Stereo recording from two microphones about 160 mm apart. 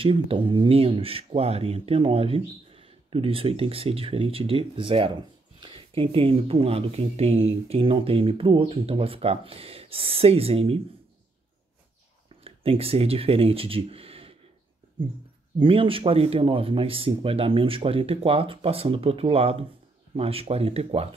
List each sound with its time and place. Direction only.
0.0 s speech: 35° right (ahead or behind)
12.4 s speech: 35° right (ahead or behind)
15.6 s speech: 35° right (ahead or behind)